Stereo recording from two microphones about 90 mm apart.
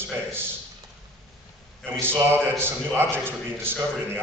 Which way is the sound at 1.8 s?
25° right (ahead or behind).